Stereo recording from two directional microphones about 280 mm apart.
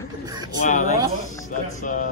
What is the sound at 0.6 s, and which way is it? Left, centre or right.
Speech, left.